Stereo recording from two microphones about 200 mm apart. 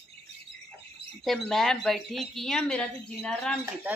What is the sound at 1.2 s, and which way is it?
Speech, centre (ahead or behind).